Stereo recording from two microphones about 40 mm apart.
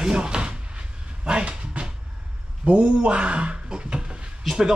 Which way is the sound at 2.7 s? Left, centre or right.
Right.